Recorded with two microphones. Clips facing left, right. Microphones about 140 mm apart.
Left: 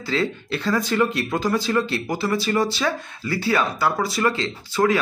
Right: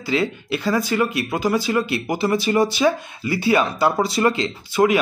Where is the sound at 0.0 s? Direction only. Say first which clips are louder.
Right 2 dB; 15° right (ahead or behind).